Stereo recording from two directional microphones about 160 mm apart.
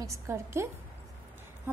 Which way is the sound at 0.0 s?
20° right (ahead or behind).